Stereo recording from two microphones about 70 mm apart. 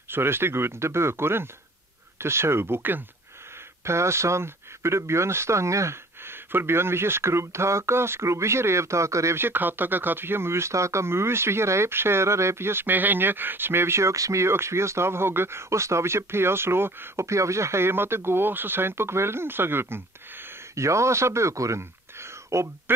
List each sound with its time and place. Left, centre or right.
0.1 s speech: right
20.7 s speech: right